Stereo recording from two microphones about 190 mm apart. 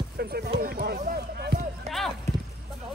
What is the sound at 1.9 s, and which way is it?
Clip-clop, 35° right (ahead or behind).